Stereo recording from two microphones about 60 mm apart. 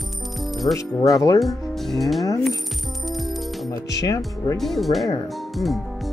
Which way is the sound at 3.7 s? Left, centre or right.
Left.